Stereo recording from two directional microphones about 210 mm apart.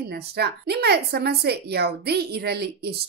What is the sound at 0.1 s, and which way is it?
A woman's voice, 50° right (ahead or behind).